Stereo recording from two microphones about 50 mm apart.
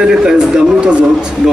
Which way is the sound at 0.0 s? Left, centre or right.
Centre.